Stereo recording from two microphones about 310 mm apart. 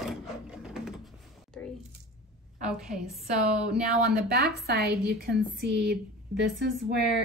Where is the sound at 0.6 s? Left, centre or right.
Centre.